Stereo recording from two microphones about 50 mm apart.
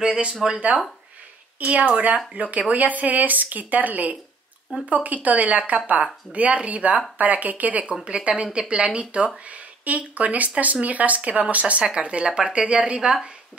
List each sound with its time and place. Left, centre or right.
0.0 s speech: centre
0.7 s speech: right
7.8 s speech: centre